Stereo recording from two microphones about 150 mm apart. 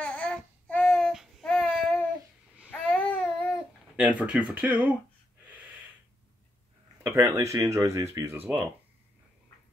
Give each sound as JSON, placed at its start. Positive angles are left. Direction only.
{"t": 0.0, "sound": "babbling", "side_deg": 10}
{"t": 2.7, "sound": "baby cry", "side_deg": 10}
{"t": 3.9, "sound": "speech", "side_deg": -10}
{"t": 5.5, "sound": "snort", "side_deg": -10}
{"t": 7.0, "sound": "speech", "side_deg": -20}